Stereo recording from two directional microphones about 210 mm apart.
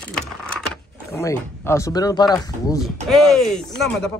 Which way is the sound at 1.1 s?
15° left (ahead or behind).